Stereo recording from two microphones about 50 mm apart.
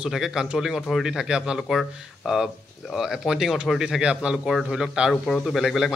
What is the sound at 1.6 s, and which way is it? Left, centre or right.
Speech, centre.